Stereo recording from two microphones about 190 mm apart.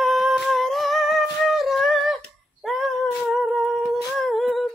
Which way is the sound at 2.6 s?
Centre (ahead or behind).